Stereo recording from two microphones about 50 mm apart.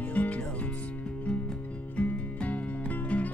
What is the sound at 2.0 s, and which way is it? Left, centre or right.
Music, left.